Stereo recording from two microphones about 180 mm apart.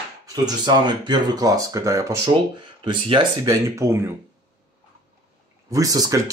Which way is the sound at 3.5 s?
15° right (ahead or behind).